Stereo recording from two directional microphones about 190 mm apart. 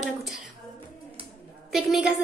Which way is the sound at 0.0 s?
Centre (ahead or behind).